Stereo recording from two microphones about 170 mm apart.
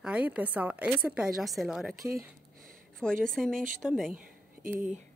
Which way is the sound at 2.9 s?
5° left (ahead or behind).